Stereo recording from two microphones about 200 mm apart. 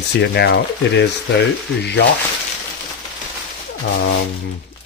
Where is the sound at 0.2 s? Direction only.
55° left (ahead or behind).